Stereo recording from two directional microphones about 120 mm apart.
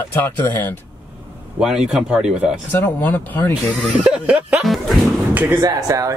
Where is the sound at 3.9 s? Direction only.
10° right (ahead or behind).